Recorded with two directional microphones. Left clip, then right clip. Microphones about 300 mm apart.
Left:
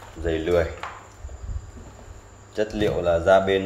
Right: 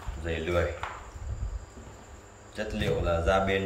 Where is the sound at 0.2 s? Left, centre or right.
Centre.